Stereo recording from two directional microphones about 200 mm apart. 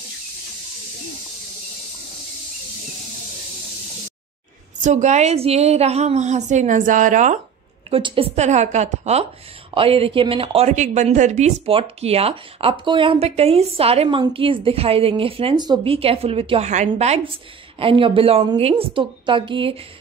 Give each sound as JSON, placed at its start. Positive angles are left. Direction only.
{"t": 4.8, "sound": "a woman's voice", "side_deg": -35}
{"t": 7.9, "sound": "a woman's voice", "side_deg": -25}